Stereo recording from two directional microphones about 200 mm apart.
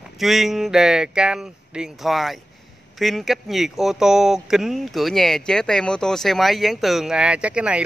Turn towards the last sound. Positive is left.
turn(degrees=-5)  # may be behind; listen again after turning